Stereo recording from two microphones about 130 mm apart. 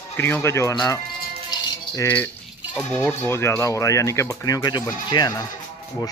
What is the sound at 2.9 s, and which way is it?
Speech, 15° left (ahead or behind).